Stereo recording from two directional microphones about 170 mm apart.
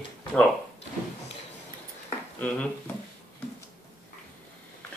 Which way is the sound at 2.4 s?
10° left (ahead or behind).